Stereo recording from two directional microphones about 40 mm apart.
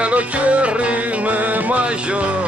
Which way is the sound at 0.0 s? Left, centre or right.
Right.